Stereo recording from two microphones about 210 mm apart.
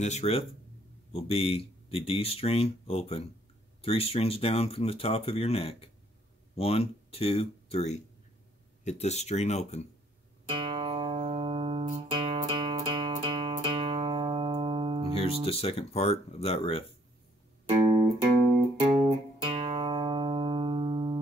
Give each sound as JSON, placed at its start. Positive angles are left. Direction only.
{"t": 0.0, "sound": "speech", "side_deg": 30}
{"t": 10.5, "sound": "music", "side_deg": -25}
{"t": 15.4, "sound": "speech", "side_deg": 30}
{"t": 17.6, "sound": "music", "side_deg": -25}
{"t": 19.0, "sound": "music", "side_deg": -25}